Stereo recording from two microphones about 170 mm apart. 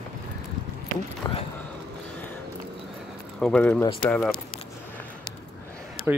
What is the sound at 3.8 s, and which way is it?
Speech, 30° left (ahead or behind).